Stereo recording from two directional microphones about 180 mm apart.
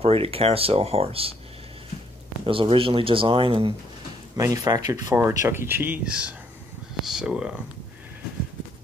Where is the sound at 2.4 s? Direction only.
30° right (ahead or behind); by 7.6 s 5° right (ahead or behind).